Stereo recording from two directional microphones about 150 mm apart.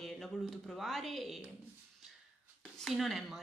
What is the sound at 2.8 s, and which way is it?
Speech, centre (ahead or behind).